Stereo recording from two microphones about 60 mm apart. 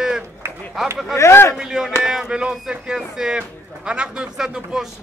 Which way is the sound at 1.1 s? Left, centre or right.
Left.